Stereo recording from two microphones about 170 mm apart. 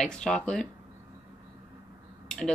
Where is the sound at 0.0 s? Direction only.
5° left (ahead or behind).